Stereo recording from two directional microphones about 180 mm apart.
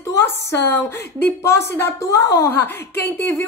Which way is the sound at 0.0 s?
15° left (ahead or behind).